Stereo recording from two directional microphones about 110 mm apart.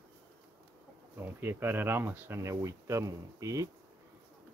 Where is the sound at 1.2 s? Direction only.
20° right (ahead or behind).